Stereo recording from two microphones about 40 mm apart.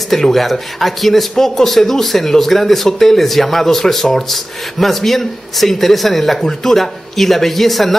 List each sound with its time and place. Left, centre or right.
0.1 s speech: centre